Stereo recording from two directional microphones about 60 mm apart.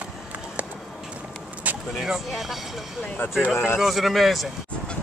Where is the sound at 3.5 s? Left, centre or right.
Left.